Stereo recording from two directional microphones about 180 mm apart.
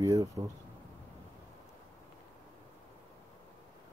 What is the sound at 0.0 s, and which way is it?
Speech, 20° right (ahead or behind).